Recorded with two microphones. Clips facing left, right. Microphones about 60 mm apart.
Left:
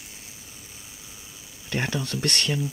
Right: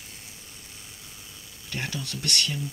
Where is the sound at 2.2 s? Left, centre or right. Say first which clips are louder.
Even; left.